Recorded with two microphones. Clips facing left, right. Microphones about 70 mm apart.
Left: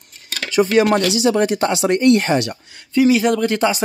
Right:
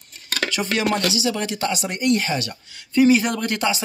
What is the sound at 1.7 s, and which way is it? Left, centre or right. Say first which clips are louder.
Speech: left 6 dB; left.